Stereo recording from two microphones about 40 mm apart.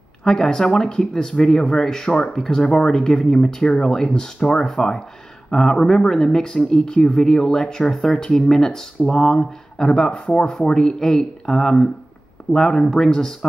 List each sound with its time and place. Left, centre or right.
0.2 s speech: centre
10.7 s speech: centre